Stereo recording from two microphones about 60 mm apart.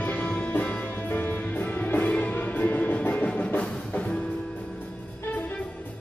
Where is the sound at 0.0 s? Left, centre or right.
Left.